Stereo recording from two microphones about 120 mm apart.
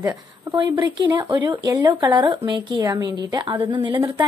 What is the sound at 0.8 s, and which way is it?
Speech, 40° right (ahead or behind).